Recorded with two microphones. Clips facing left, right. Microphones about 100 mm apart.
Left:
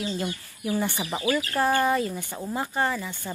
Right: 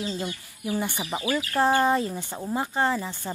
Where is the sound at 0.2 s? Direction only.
15° right (ahead or behind).